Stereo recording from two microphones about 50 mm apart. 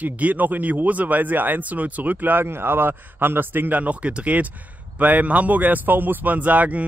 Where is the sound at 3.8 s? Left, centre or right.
Right.